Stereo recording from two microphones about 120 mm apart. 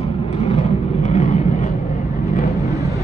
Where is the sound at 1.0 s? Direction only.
90° left.